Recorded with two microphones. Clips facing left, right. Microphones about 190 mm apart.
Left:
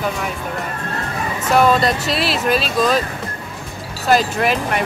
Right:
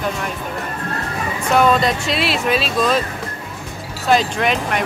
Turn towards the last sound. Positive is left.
turn(degrees=5)  # may be behind; listen again after turning